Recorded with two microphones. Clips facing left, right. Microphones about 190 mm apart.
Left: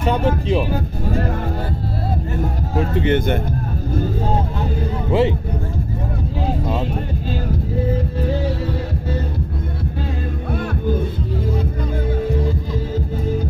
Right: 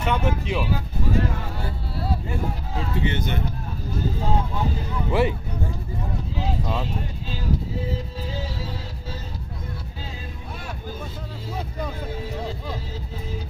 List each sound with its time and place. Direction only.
0.0 s speech: 35° left (ahead or behind)
2.7 s speech: 55° left (ahead or behind)
5.1 s speech: 25° left (ahead or behind)